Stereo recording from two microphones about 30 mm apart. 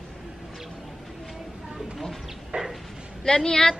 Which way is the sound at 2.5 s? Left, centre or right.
Right.